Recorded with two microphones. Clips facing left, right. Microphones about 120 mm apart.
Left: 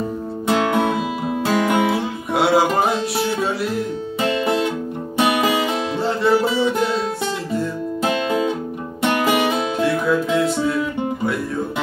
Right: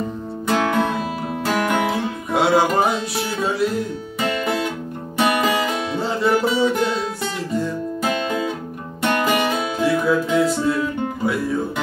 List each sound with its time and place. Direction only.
0.5 s music: 5° left (ahead or behind)
5.1 s music: 10° left (ahead or behind)
8.0 s music: 20° left (ahead or behind)
9.8 s music: centre (ahead or behind)